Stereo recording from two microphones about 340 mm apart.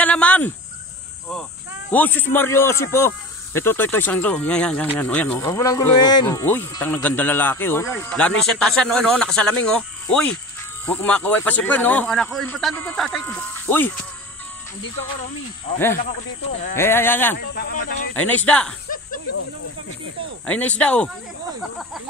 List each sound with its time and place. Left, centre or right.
0.0 s cricket: centre
1.9 s speech: centre
16.7 s speech: centre
17.4 s speech: left
18.1 s speech: centre
20.4 s speech: centre